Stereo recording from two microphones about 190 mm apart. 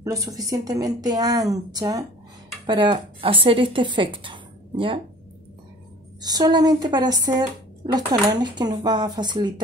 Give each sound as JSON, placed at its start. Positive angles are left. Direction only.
{"t": 0.0, "sound": "speech", "side_deg": -20}
{"t": 6.2, "sound": "speech", "side_deg": -20}